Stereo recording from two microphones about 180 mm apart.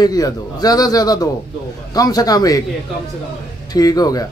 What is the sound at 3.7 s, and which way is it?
Speech, 20° left (ahead or behind).